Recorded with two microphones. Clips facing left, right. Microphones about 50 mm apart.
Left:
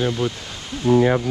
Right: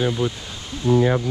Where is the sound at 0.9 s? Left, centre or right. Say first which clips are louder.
Left 2 dB; left.